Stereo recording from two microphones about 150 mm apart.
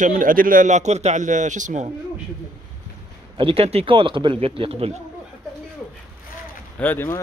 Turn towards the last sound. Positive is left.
turn(degrees=15)  # may be behind; listen again after turning